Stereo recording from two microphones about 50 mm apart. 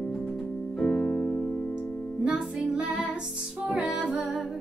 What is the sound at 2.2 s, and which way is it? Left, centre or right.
Music, right.